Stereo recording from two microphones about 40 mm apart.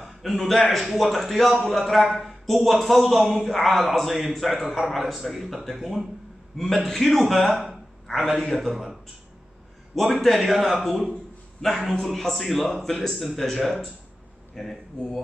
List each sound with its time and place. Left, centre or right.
0.0 s a man's voice: centre
2.0 s speech: centre
2.4 s a man's voice: centre
6.5 s a man's voice: centre
10.2 s a man's voice: centre
13.1 s a man's voice: centre